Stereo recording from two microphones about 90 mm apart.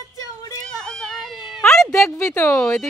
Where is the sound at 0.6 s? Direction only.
10° left (ahead or behind).